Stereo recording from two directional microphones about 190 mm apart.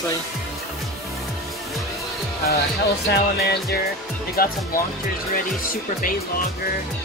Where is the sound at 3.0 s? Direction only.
60° left (ahead or behind).